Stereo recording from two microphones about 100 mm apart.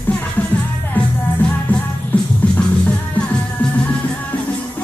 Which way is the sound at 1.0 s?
15° left (ahead or behind).